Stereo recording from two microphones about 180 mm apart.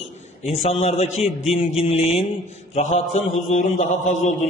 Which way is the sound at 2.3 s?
45° left (ahead or behind).